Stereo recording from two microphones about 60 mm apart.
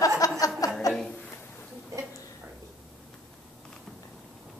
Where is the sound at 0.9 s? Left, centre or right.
Left.